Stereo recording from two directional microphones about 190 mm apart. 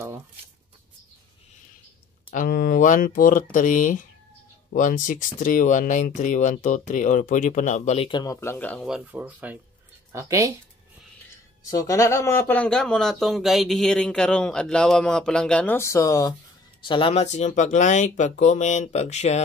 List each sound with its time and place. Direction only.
2.3 s speech: 50° left (ahead or behind); by 8.2 s 35° left (ahead or behind)
8.2 s speech: 15° left (ahead or behind); by 10.5 s 15° right (ahead or behind)
11.7 s speech: 15° left (ahead or behind); by 19.4 s 35° left (ahead or behind)